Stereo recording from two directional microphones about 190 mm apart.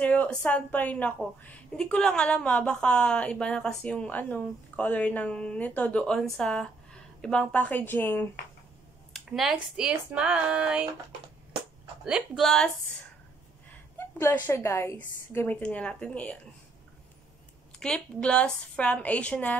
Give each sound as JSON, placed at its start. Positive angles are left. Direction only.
{"t": 0.0, "sound": "a woman's voice", "side_deg": 5}
{"t": 9.1, "sound": "a woman's voice", "side_deg": 0}
{"t": 12.0, "sound": "a woman's voice", "side_deg": 0}
{"t": 13.9, "sound": "a woman's voice", "side_deg": 10}
{"t": 17.7, "sound": "a woman's voice", "side_deg": 5}